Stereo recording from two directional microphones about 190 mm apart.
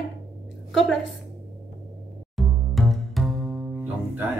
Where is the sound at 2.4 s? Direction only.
Centre (ahead or behind).